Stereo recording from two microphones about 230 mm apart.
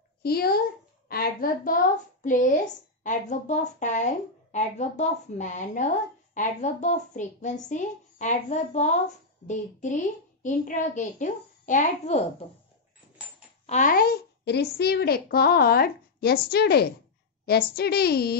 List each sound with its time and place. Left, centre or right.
0.2 s a woman's voice: left
13.7 s a woman's voice: left